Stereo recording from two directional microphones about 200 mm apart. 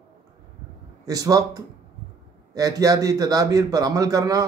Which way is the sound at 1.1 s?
20° right (ahead or behind).